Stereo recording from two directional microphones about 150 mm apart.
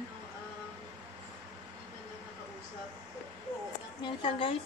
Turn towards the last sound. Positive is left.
turn(degrees=35)  # may be behind; listen again after turning